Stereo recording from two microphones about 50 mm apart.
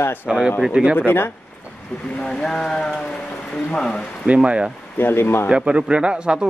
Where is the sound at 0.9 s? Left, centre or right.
Left.